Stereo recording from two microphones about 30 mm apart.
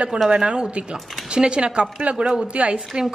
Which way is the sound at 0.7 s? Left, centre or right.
Right.